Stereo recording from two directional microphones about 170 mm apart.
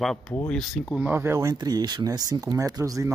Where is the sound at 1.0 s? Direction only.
10° right (ahead or behind).